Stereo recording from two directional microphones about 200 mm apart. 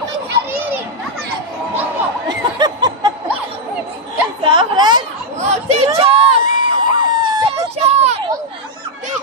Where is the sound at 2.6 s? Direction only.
20° right (ahead or behind).